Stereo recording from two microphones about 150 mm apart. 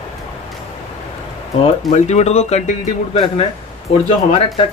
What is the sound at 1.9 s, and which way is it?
Speech, 50° left (ahead or behind).